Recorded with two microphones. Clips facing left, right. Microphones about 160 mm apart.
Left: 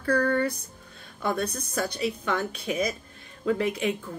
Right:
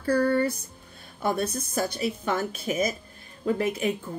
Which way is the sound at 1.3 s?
5° right (ahead or behind).